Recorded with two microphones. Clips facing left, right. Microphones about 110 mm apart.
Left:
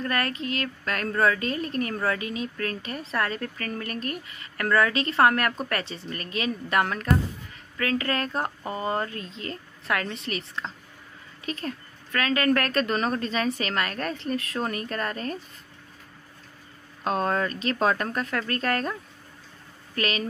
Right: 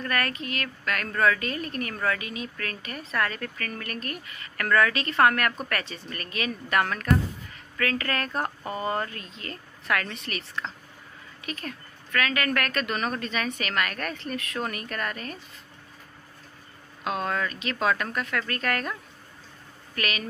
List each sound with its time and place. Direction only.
0.0 s speech: 25° left (ahead or behind)
17.0 s speech: 35° left (ahead or behind)
20.0 s speech: 30° left (ahead or behind)